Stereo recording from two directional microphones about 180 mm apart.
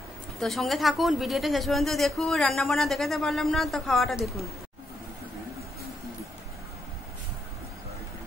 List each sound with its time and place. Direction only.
0.4 s speech: centre (ahead or behind)